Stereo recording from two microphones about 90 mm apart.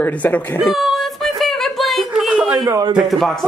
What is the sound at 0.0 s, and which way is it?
Speech, 20° left (ahead or behind).